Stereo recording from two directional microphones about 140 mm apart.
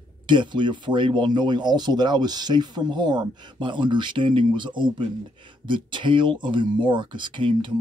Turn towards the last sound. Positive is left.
turn(degrees=-35)  # may be behind; listen again after turning